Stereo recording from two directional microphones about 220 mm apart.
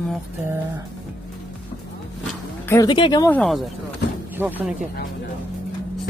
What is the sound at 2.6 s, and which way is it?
Speech, 15° left (ahead or behind).